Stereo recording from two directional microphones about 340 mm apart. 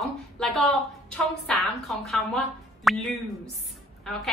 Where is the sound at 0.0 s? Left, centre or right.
Centre.